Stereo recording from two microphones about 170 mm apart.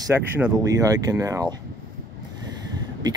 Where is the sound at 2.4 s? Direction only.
25° right (ahead or behind).